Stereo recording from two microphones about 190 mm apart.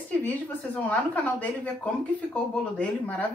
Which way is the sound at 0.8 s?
10° left (ahead or behind).